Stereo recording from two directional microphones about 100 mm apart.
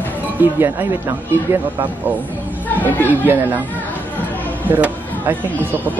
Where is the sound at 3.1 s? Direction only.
20° right (ahead or behind).